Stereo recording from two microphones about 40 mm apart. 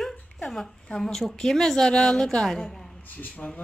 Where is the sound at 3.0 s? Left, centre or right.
Left.